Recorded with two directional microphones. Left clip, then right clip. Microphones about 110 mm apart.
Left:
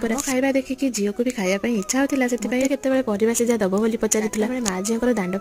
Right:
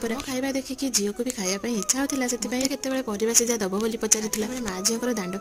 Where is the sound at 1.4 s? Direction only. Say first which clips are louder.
Left 4 dB; 20° left (ahead or behind).